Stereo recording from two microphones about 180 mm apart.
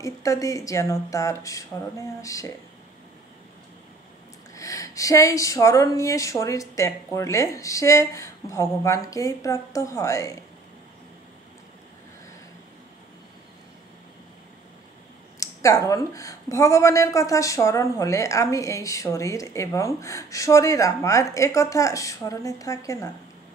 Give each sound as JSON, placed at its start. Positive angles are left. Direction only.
{"t": 0.0, "sound": "a woman's voice", "side_deg": 20}
{"t": 4.6, "sound": "a woman's voice", "side_deg": 20}
{"t": 15.3, "sound": "a woman's voice", "side_deg": 15}